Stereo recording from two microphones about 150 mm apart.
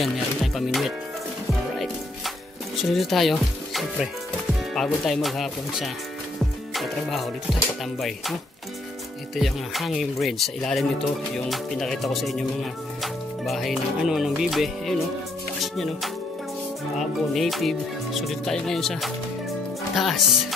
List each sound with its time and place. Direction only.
0.0 s music: centre (ahead or behind)
2.8 s speech: centre (ahead or behind)
6.7 s music: centre (ahead or behind)
9.3 s speech: centre (ahead or behind)